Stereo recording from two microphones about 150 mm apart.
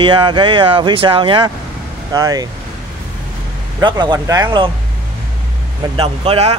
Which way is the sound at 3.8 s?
30° right (ahead or behind).